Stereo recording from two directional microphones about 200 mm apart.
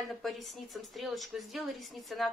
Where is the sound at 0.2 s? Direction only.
Centre (ahead or behind).